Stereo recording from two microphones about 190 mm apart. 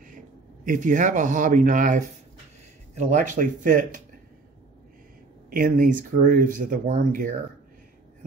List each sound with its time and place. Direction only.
0.7 s speech: 45° right (ahead or behind)
5.5 s speech: 45° right (ahead or behind)